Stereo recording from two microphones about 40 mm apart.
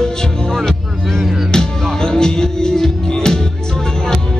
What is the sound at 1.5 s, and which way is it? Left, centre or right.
Music, centre.